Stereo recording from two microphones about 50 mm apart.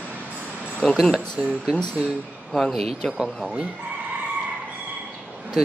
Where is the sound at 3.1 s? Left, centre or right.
Centre.